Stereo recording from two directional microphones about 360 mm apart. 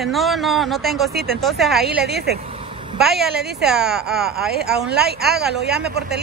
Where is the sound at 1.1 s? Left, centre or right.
Right.